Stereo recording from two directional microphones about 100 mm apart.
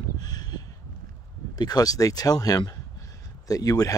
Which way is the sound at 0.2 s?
40° left (ahead or behind).